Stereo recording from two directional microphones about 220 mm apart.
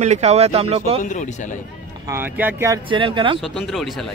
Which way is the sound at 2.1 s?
10° right (ahead or behind).